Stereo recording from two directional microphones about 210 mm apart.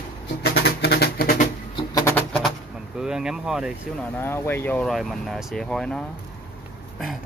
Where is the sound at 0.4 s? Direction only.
50° left (ahead or behind).